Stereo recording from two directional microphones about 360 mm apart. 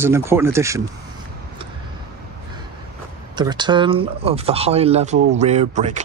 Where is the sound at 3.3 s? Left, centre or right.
Centre.